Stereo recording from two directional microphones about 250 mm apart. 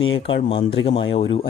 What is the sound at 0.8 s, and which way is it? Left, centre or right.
Speech, left.